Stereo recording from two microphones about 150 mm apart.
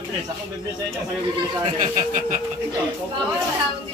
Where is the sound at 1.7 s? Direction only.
55° right (ahead or behind).